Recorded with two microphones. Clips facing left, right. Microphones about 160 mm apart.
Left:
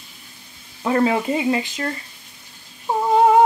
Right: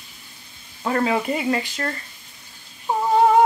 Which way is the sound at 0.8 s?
20° left (ahead or behind).